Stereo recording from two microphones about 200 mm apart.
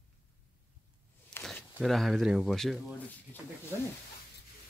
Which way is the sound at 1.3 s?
5° left (ahead or behind).